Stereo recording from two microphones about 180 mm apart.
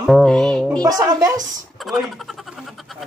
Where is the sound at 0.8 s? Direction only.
20° right (ahead or behind).